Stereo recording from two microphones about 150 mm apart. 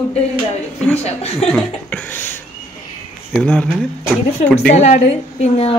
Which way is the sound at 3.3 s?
10° left (ahead or behind).